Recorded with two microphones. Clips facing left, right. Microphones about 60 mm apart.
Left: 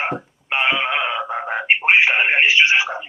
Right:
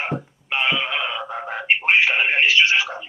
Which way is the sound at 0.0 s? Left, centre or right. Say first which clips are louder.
Left 3 dB; left.